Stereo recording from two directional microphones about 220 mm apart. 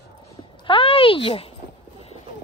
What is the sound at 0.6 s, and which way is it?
Speech, 25° left (ahead or behind).